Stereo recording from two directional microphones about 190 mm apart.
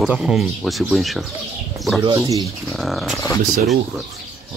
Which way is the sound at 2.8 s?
Centre (ahead or behind).